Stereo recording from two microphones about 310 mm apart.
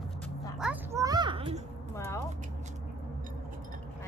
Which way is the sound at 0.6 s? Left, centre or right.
Centre.